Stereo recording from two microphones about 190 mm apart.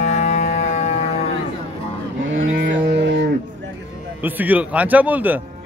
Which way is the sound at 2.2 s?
85° right.